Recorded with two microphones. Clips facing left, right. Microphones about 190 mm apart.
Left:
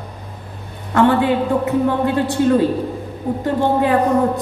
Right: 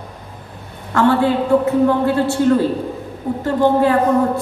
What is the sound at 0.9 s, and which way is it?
Speech, 20° left (ahead or behind).